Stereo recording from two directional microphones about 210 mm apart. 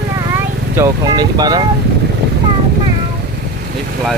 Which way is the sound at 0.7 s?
15° right (ahead or behind).